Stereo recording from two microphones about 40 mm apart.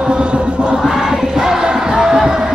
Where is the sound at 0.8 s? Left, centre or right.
Centre.